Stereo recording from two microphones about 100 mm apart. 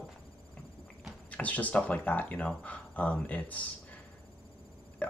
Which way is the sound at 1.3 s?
15° left (ahead or behind).